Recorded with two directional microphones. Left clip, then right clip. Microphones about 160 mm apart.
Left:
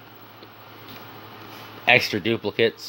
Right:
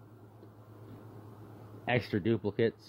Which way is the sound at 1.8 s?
10° left (ahead or behind).